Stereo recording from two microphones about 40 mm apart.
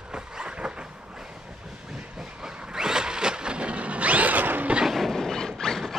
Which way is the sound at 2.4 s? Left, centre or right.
Centre.